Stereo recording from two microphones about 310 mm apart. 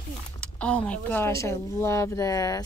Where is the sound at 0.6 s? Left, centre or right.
Centre.